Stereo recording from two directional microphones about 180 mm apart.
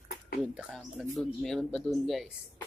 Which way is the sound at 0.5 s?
5° right (ahead or behind).